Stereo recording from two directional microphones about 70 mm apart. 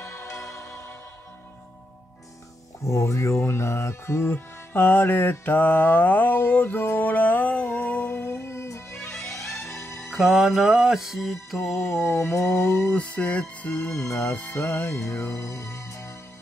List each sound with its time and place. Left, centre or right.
0.0 s music: left
2.9 s music: left
10.0 s music: centre
11.9 s music: left
12.9 s music: centre
13.8 s music: left
14.3 s music: left
14.6 s music: left